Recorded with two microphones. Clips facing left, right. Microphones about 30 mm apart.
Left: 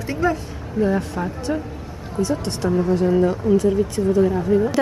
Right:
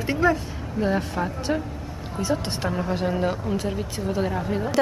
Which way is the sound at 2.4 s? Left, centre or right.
Right.